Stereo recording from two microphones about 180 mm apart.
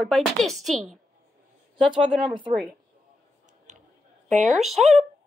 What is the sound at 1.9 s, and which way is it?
Speech, 25° right (ahead or behind).